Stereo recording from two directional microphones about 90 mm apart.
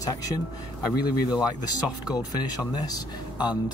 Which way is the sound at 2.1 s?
50° left (ahead or behind).